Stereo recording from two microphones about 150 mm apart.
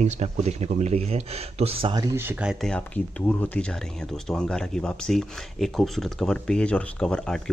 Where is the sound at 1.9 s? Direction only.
15° right (ahead or behind).